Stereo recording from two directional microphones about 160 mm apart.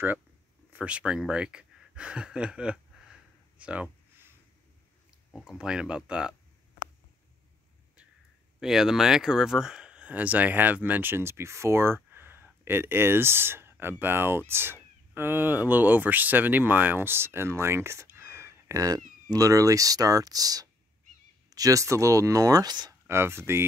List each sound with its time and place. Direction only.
0.7 s a sound: 5° right (ahead or behind)
5.3 s speech: 5° right (ahead or behind)
8.5 s speech: 5° right (ahead or behind)